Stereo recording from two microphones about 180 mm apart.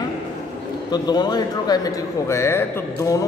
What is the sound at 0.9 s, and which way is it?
A man's voice, 20° left (ahead or behind).